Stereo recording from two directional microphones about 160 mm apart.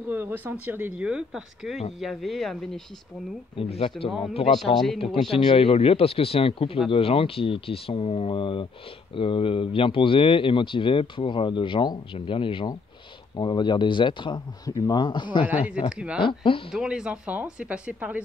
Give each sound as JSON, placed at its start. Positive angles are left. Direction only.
{"t": 0.1, "sound": "speech", "side_deg": -15}
{"t": 3.5, "sound": "speech", "side_deg": 35}
{"t": 4.7, "sound": "speech", "side_deg": 0}
{"t": 5.3, "sound": "speech", "side_deg": 35}
{"t": 16.7, "sound": "speech", "side_deg": -5}